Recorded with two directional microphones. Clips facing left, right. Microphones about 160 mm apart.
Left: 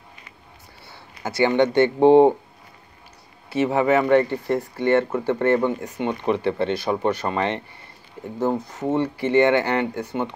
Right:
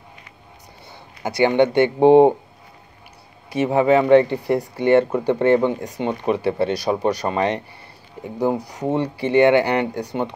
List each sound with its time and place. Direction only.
1.2 s speech: 15° right (ahead or behind)
3.4 s speech: 15° right (ahead or behind)